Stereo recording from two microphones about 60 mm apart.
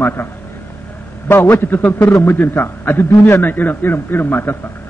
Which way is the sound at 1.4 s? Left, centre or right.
Left.